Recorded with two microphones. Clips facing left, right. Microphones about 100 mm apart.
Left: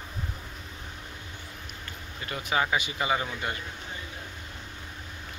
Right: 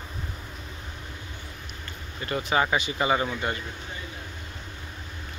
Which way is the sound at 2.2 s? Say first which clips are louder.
Right 4 dB; 5° left (ahead or behind).